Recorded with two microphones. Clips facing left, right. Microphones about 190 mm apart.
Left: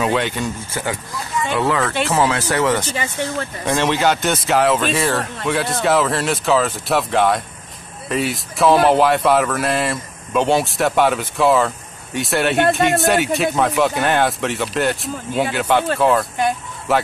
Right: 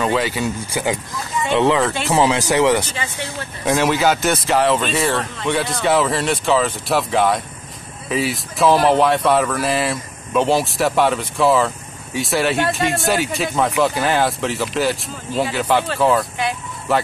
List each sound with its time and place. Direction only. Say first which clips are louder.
0.0 s speech: even; centre (ahead or behind)
1.5 s speech: right 4 dB; 20° right (ahead or behind); by 17.0 s centre (ahead or behind)